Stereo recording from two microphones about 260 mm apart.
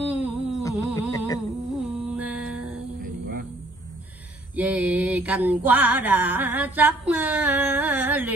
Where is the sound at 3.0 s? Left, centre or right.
Right.